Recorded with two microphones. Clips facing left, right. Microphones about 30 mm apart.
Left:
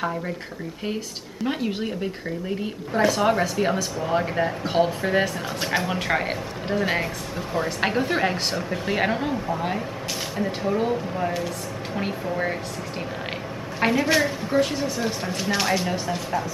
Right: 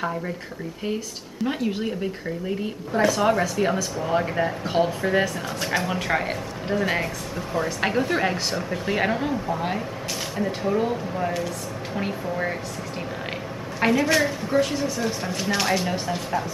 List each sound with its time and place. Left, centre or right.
1.4 s speech: centre
13.7 s speech: centre